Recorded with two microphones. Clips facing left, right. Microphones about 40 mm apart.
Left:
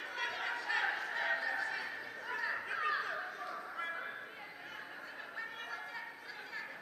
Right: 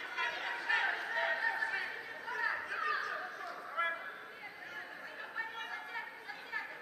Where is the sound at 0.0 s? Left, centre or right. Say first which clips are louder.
Right 1 dB; centre.